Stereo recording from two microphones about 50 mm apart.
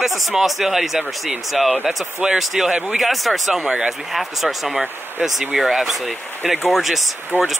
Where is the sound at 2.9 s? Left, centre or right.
Centre.